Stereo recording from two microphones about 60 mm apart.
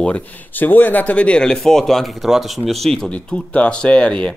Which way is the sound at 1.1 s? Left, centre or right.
Centre.